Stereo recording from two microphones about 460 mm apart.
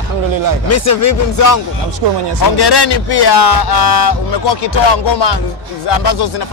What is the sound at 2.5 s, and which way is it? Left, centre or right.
Speech, left.